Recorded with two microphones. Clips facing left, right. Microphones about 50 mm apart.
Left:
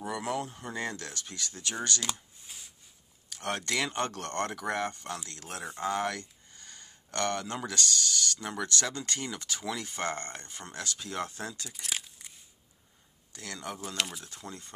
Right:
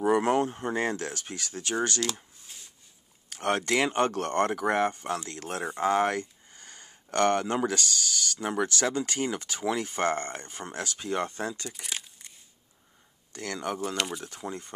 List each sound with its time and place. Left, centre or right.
0.0 s speech: right
2.4 s a sound: centre
3.4 s speech: centre
5.9 s a sound: right
7.7 s speech: centre
11.2 s speech: centre
11.7 s crumpling: centre
13.3 s speech: right
13.8 s speech: centre
14.2 s speech: right